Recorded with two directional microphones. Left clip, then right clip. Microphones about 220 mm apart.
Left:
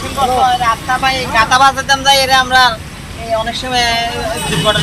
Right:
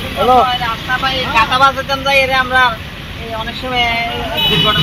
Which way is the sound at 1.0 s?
30° left (ahead or behind).